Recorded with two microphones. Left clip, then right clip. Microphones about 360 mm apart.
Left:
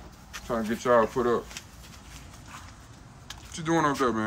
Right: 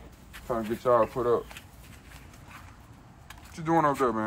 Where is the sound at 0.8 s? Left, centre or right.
Centre.